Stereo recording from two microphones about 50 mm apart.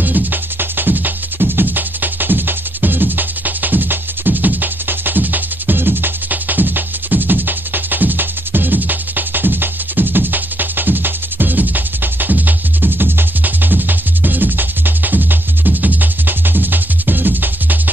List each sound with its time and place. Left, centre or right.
0.0 s music: right